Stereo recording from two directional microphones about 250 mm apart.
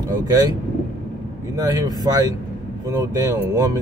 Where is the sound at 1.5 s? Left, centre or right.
Centre.